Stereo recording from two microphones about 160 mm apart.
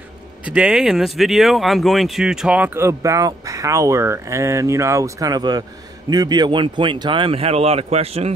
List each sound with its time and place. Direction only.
0.5 s speech: 5° right (ahead or behind); by 8.3 s 40° right (ahead or behind)